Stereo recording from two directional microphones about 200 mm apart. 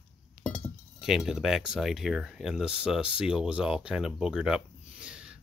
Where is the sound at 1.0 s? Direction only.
Centre (ahead or behind).